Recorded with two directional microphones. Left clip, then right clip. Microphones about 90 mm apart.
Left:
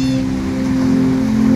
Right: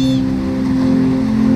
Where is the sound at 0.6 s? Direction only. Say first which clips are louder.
Even; 5° left (ahead or behind).